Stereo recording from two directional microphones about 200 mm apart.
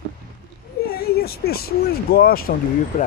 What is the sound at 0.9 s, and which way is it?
Speech, 50° left (ahead or behind).